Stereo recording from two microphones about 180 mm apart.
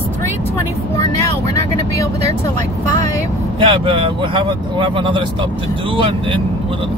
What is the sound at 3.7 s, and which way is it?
Speech, 30° right (ahead or behind).